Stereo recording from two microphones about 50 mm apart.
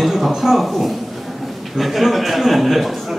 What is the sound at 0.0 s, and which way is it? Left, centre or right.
A man's voice, centre.